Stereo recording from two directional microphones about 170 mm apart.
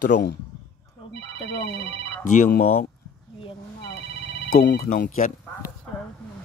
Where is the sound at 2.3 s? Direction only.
55° left (ahead or behind).